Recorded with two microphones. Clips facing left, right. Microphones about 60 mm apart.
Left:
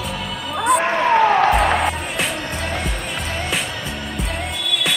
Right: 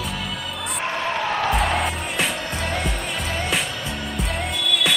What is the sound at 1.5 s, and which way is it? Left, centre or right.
Music, centre.